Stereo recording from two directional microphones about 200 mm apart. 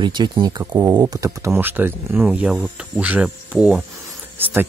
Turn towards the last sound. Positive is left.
turn(degrees=-10)  # may be behind; listen again after turning